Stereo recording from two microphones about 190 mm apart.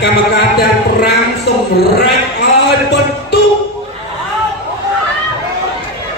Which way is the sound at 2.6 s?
60° left (ahead or behind).